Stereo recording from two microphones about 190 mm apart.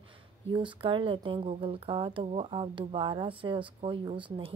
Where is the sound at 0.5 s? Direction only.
25° right (ahead or behind).